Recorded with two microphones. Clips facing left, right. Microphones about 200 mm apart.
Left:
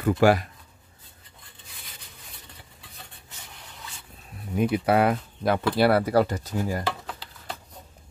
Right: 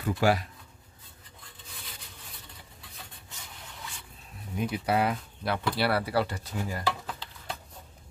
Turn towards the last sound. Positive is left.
turn(degrees=45)  # may be behind; listen again after turning